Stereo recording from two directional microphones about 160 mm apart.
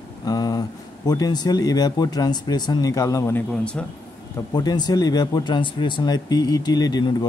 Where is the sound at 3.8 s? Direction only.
5° left (ahead or behind).